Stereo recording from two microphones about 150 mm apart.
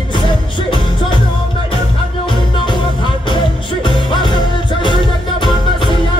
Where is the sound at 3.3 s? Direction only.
35° left (ahead or behind).